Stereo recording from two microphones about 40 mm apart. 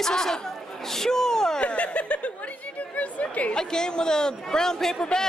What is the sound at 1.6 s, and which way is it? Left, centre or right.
Snicker, left.